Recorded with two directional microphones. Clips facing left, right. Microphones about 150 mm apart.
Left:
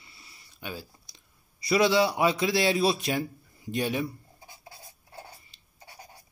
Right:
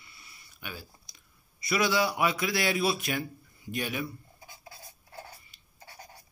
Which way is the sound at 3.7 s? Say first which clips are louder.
Left 5 dB; 30° left (ahead or behind).